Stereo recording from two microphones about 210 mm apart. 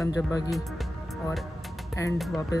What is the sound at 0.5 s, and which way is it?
Speech, centre (ahead or behind).